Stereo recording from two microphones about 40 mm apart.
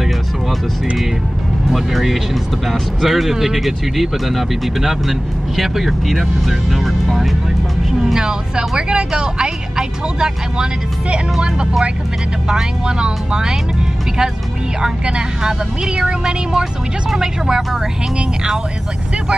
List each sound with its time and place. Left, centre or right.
1.7 s speech: centre
8.0 s speech: centre
14.8 s speech: right